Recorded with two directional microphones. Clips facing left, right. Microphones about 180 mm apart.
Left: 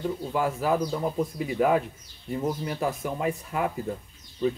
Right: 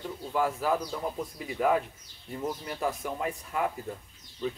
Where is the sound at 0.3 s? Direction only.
5° left (ahead or behind).